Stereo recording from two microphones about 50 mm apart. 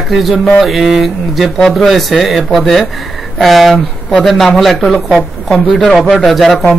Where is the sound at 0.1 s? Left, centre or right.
Centre.